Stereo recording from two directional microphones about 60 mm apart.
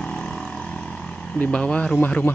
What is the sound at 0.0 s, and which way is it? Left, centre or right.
Vehicle, centre.